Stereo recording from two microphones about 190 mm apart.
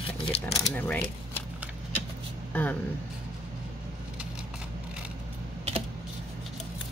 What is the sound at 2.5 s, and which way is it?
Speech, 10° left (ahead or behind).